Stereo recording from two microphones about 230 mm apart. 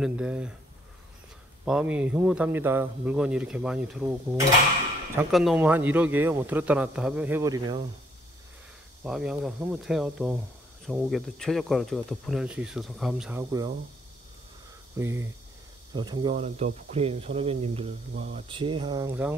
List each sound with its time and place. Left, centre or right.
0.0 s speech: centre
1.6 s a man's voice: centre
9.0 s speech: centre
15.0 s a man's voice: centre